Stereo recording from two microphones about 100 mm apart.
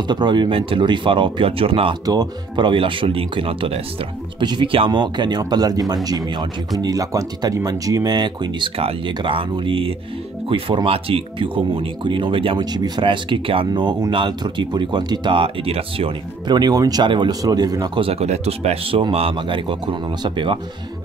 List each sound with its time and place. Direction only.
0.0 s speech: 45° right (ahead or behind); by 2.0 s 65° right (ahead or behind)
2.0 s speech: 45° right (ahead or behind); by 3.8 s 65° right (ahead or behind)
4.4 s speech: 50° right (ahead or behind)
6.8 s speech: 35° right (ahead or behind)
8.7 s speech: 60° right (ahead or behind)
12.5 s speech: 45° right (ahead or behind); by 16.2 s 70° right (ahead or behind)
16.4 s speech: 45° right (ahead or behind)
17.9 s speech: 80° right; by 20.5 s 50° right (ahead or behind)